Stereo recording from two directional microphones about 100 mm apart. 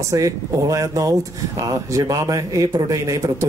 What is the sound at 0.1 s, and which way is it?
Speech, 35° right (ahead or behind).